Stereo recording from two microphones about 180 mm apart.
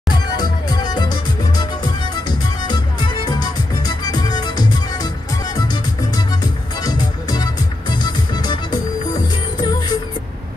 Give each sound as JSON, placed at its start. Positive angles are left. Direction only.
{"t": 0.1, "sound": "music", "side_deg": 25}